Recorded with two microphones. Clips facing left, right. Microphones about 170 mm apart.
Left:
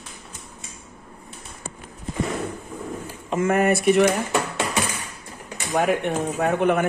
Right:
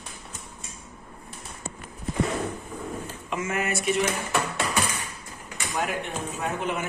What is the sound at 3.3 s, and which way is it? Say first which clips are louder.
Speech: left 9 dB; 55° left (ahead or behind).